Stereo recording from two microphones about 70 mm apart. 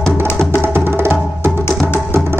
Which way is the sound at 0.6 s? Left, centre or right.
Right.